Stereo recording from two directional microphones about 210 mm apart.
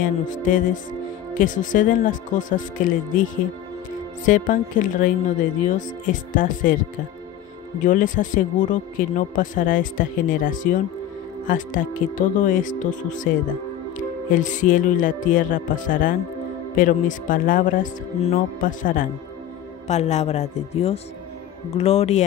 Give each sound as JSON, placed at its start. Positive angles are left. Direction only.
{"t": 0.0, "sound": "speech", "side_deg": 40}
{"t": 4.3, "sound": "speech", "side_deg": 40}
{"t": 6.3, "sound": "speech", "side_deg": 40}
{"t": 7.8, "sound": "speech", "side_deg": 40}